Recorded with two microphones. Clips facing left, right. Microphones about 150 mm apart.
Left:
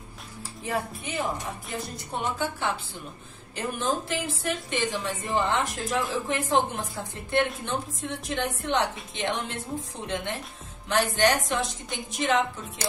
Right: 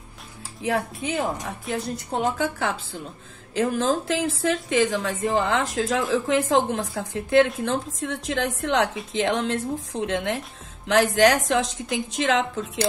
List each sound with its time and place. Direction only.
0.7 s a woman's voice: 85° right